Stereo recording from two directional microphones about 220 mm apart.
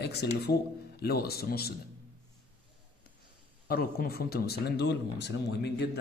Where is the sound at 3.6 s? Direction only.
45° left (ahead or behind).